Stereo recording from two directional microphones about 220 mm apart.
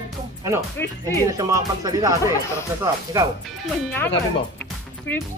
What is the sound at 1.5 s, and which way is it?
Speech, 15° right (ahead or behind).